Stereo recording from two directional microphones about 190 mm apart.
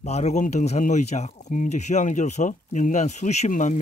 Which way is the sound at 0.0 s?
35° left (ahead or behind).